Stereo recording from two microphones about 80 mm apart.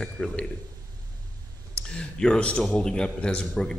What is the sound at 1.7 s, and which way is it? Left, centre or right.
A man's voice, centre.